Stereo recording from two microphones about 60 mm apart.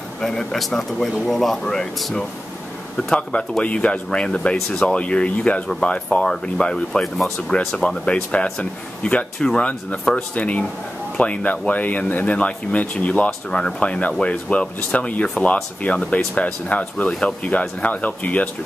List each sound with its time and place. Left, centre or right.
0.2 s speech: centre
3.1 s speech: centre